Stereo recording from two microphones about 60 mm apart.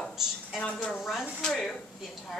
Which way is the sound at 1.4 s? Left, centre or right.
Centre.